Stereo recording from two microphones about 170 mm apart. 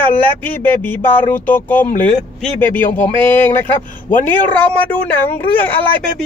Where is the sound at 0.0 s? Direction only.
10° left (ahead or behind).